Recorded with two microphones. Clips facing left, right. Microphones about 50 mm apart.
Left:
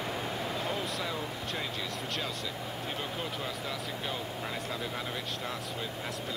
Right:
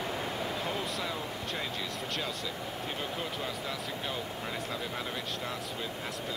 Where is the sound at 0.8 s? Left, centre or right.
Centre.